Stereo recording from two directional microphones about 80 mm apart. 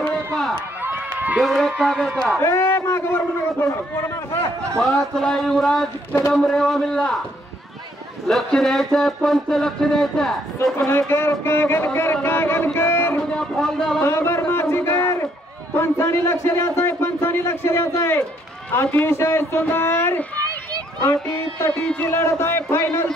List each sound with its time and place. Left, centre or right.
0.0 s run: centre
0.8 s run: right
1.4 s speech: centre
2.4 s a man's voice: left
4.7 s speech: centre
8.3 s speech: centre
10.9 s a man's voice: left
13.3 s a sound: centre
14.0 s a sound: left
15.7 s a man's voice: left
21.6 s speech: centre